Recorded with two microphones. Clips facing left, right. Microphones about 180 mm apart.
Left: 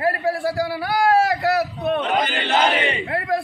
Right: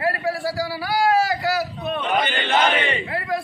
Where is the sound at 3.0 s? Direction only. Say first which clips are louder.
Left 3 dB; 50° left (ahead or behind).